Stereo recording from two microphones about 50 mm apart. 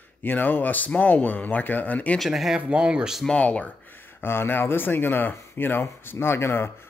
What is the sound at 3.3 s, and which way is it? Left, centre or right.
Speech, left.